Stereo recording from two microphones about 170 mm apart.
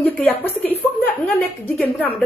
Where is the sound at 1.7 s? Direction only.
10° left (ahead or behind).